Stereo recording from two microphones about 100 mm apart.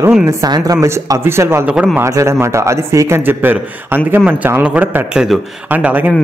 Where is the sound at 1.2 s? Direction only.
25° right (ahead or behind).